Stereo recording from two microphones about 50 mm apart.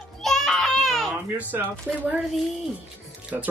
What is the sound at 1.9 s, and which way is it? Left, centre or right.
Speech, right.